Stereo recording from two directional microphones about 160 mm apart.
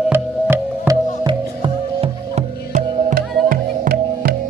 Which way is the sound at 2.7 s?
60° right (ahead or behind).